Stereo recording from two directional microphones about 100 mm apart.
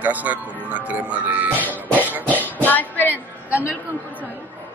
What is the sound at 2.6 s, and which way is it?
Speech, 20° left (ahead or behind).